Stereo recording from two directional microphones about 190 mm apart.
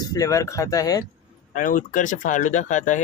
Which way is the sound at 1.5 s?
45° left (ahead or behind).